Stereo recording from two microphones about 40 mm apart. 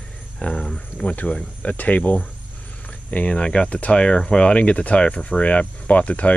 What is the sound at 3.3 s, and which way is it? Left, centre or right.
Speech, left.